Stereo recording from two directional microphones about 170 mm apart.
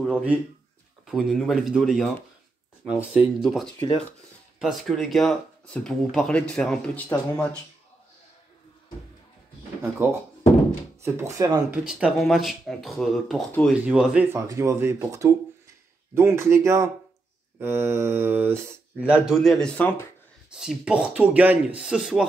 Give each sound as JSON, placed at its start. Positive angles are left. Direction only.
{"t": 0.0, "sound": "speech", "side_deg": -5}
{"t": 11.0, "sound": "speech", "side_deg": -15}
{"t": 11.9, "sound": "speech", "side_deg": -5}
{"t": 14.3, "sound": "speech", "side_deg": -15}
{"t": 20.5, "sound": "speech", "side_deg": -5}